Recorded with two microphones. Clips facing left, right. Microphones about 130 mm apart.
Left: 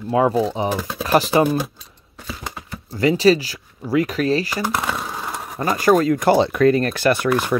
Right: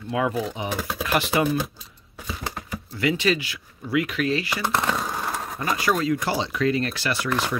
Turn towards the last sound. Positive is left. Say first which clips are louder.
# left 8 dB
turn(degrees=55)  # may be behind; listen again after turning